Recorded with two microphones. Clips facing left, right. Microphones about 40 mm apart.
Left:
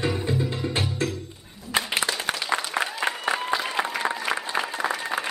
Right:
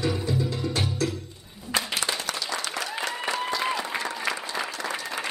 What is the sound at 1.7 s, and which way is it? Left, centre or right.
Applause, left.